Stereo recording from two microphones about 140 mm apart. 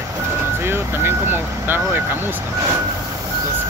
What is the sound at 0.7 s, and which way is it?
Speech, 15° right (ahead or behind).